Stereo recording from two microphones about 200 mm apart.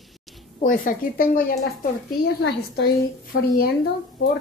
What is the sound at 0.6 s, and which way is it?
A woman's voice, 40° left (ahead or behind).